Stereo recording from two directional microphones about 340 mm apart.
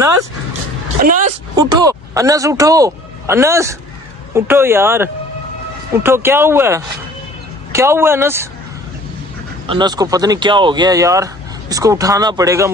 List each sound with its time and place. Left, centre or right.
0.0 s speech: centre
1.0 s a woman's voice: right
1.6 s speech: centre
9.7 s speech: centre